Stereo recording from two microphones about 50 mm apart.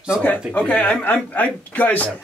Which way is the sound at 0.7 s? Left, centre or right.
Left.